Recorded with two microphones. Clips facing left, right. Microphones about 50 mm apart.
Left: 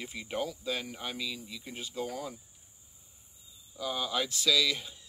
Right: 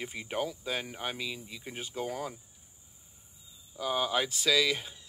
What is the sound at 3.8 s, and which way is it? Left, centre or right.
Speech, right.